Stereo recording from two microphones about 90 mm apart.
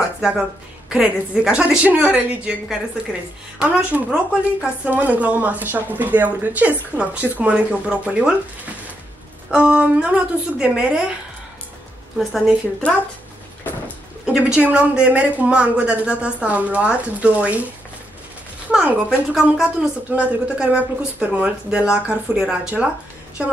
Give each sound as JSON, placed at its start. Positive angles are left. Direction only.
{"t": 0.8, "sound": "a woman's voice", "side_deg": -10}
{"t": 9.5, "sound": "a woman's voice", "side_deg": -10}
{"t": 12.2, "sound": "a woman's voice", "side_deg": 0}
{"t": 12.8, "sound": "speech", "side_deg": 15}
{"t": 14.2, "sound": "a woman's voice", "side_deg": -10}
{"t": 18.7, "sound": "a woman's voice", "side_deg": -10}